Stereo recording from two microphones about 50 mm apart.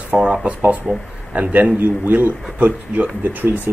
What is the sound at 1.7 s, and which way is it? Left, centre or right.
Speech, right.